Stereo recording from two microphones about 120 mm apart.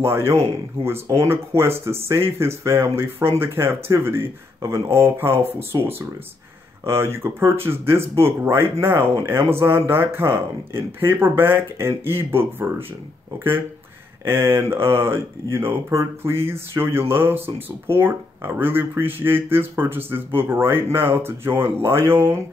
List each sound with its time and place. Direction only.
0.0 s speech: 20° right (ahead or behind)
14.2 s speech: 20° right (ahead or behind)